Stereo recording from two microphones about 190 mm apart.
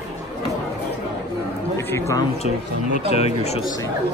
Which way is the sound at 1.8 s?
15° left (ahead or behind).